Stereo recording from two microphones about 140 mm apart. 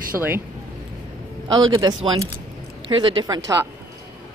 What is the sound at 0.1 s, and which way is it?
Speech, 10° right (ahead or behind).